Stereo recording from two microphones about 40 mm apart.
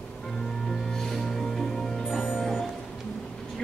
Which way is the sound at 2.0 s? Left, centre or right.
Centre.